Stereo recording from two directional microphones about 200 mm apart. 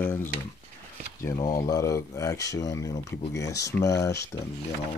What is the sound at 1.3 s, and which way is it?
Speech, 20° left (ahead or behind).